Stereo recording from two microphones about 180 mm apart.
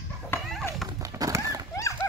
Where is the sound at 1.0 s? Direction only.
20° right (ahead or behind).